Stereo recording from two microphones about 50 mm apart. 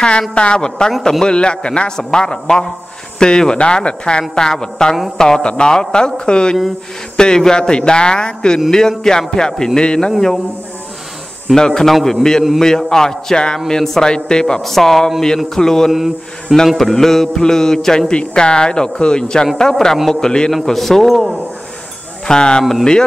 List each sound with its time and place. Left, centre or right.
0.3 s speech: left
11.5 s speech: centre
14.6 s speech: centre
15.9 s mantra: centre
16.6 s speech: centre
20.5 s a man's voice: centre